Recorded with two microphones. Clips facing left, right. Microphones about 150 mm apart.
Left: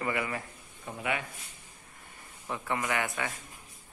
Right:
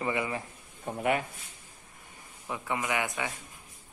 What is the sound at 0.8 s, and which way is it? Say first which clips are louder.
Speech: right 5 dB; 45° right (ahead or behind).